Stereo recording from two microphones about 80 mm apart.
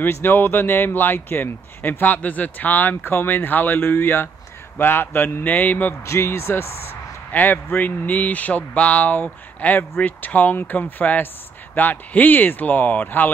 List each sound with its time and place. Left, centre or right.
0.0 s a man's voice: left
6.0 s a man's voice: left